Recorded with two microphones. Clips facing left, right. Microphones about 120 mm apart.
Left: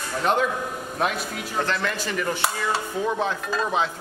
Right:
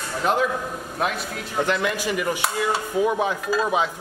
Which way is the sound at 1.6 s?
15° right (ahead or behind).